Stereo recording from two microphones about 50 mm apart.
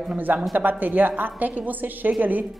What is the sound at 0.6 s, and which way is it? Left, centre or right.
Speech, right.